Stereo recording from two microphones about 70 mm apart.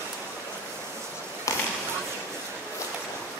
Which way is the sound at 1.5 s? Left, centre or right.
Left.